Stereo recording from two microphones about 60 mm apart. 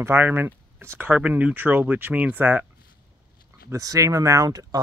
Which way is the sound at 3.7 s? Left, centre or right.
Right.